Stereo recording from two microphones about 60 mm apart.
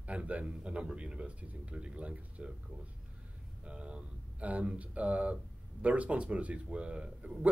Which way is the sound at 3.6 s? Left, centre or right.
Centre.